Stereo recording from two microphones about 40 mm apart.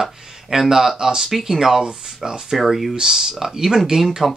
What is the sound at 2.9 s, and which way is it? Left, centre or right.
Speech, centre.